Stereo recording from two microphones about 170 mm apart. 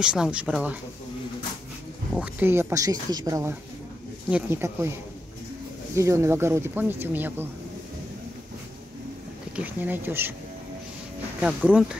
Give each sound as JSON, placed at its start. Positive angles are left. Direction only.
{"t": 0.0, "sound": "speech", "side_deg": -5}
{"t": 2.1, "sound": "speech", "side_deg": -10}
{"t": 5.9, "sound": "speech", "side_deg": -15}
{"t": 9.6, "sound": "speech", "side_deg": -10}
{"t": 11.4, "sound": "speech", "side_deg": -5}